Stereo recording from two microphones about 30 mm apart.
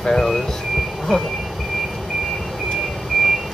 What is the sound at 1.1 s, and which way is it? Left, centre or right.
Speech, centre.